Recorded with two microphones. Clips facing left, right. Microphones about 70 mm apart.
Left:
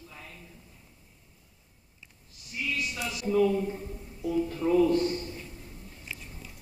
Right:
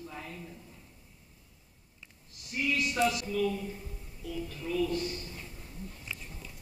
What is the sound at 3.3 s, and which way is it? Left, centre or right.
Speech, left.